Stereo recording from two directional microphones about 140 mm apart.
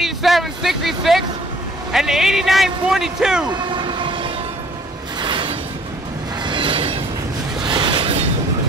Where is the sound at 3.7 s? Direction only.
35° right (ahead or behind).